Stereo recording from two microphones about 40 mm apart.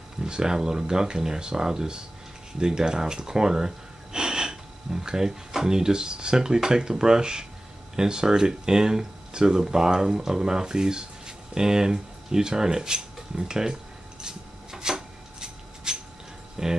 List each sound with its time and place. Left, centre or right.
0.2 s speech: centre
14.2 s rub: centre
16.6 s speech: centre